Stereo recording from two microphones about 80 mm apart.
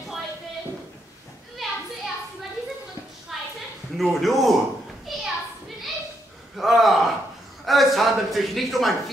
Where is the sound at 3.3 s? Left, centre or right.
Centre.